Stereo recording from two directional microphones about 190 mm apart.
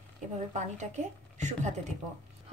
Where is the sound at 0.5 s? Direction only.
40° right (ahead or behind).